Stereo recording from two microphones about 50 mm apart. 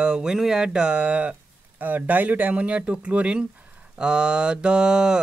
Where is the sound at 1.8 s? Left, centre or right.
Right.